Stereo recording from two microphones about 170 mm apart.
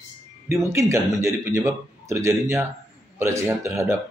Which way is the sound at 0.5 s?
15° right (ahead or behind).